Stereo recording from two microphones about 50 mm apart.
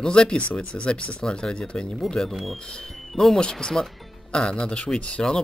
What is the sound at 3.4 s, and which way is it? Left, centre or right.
Speech, centre.